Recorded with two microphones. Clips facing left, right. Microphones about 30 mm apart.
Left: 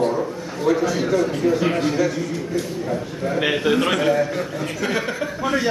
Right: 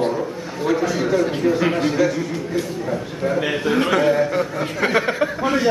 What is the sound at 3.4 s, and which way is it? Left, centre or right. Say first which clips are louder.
Speech: left 1 dB; centre.